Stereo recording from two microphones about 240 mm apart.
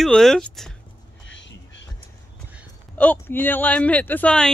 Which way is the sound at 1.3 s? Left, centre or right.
Left.